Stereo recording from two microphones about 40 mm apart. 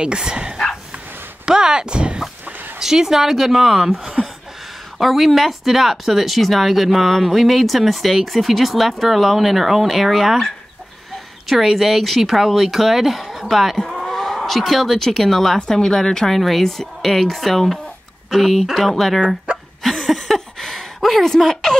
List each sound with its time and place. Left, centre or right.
0.0 s speech: right
2.8 s a woman's voice: centre
11.4 s speech: centre
19.2 s dog: right
19.8 s a sound: centre